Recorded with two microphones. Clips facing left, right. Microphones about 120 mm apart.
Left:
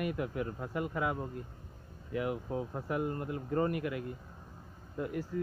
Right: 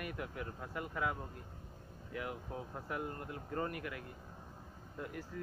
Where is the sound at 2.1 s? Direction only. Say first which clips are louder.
Left 8 dB; 20° left (ahead or behind).